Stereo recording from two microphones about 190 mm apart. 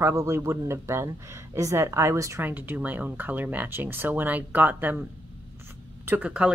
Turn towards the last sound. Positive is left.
turn(degrees=-5)  # may be behind; listen again after turning